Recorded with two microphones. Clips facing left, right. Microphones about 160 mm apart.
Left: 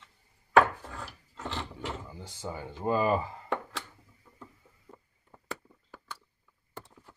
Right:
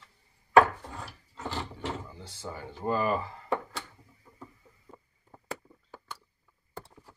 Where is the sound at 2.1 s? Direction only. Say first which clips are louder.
Left 2 dB; 15° left (ahead or behind).